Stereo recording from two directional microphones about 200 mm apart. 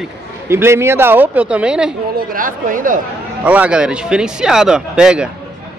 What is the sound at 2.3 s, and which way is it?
Speech, 45° right (ahead or behind).